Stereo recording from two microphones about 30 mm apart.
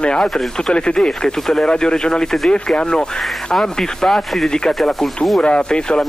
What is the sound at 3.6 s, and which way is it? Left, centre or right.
Speech, centre.